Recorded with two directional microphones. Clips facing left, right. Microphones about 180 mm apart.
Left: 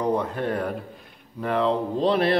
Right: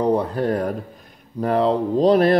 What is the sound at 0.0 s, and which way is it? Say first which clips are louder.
A man's voice: right 5 dB; 35° right (ahead or behind).